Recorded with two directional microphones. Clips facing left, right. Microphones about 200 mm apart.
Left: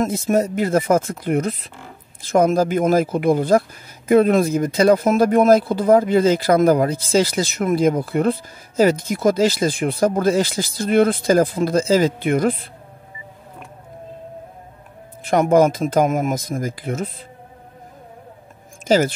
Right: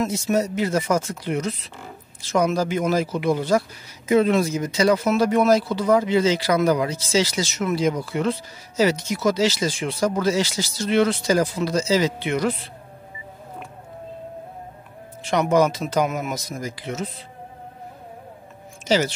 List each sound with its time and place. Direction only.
0.0 s speech: 50° left (ahead or behind)
15.2 s speech: 50° left (ahead or behind)
18.9 s speech: 50° left (ahead or behind)